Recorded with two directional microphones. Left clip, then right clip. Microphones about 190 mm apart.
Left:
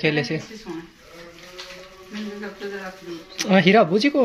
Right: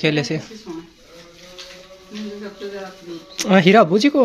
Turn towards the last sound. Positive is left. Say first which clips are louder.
# right 3 dB
turn(degrees=-15)  # may be behind; listen again after turning